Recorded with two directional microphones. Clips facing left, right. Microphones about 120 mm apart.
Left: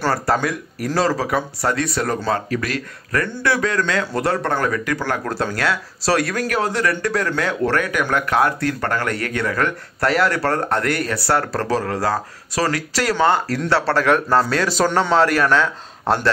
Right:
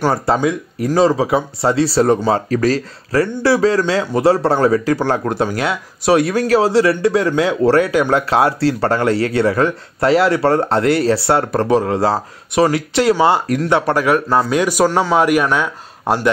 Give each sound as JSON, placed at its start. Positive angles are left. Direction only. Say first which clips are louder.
{"t": 0.0, "sound": "a man's voice", "louder": "right 4 dB", "side_deg": -15}